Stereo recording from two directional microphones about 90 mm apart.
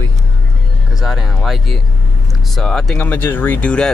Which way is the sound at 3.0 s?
20° left (ahead or behind).